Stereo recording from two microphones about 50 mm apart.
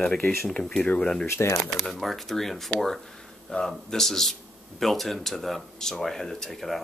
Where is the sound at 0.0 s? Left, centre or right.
Centre.